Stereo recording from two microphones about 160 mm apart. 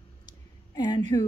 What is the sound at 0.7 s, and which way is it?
Speech, 25° left (ahead or behind).